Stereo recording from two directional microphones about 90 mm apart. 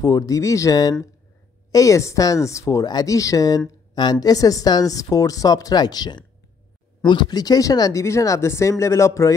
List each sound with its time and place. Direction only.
0.0 s speech: 40° left (ahead or behind)